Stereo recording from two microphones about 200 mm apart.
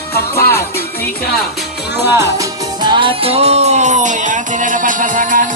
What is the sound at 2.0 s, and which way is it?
Music, 15° right (ahead or behind).